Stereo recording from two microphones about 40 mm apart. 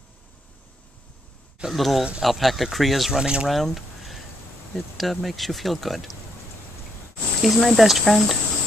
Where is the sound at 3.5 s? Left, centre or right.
Centre.